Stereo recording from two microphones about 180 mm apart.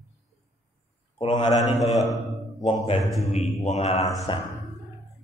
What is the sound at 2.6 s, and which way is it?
A man's voice, 30° left (ahead or behind).